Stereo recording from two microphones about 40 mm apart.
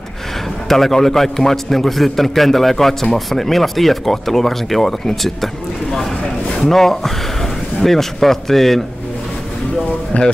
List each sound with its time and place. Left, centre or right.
0.7 s a man's voice: centre
10.1 s speech: left